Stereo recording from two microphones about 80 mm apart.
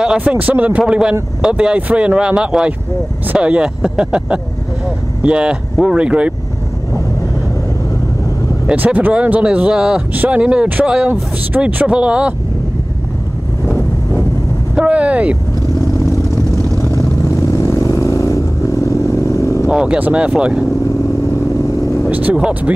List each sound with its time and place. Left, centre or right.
0.0 s speech: centre
8.6 s speech: centre
14.8 s vehicle: centre
16.8 s vehicle: left
19.7 s speech: centre
22.1 s speech: centre